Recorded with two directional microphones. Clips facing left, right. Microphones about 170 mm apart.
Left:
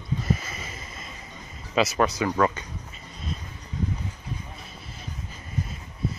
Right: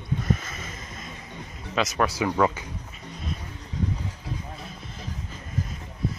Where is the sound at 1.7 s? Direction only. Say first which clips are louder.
Left 2 dB; 5° left (ahead or behind).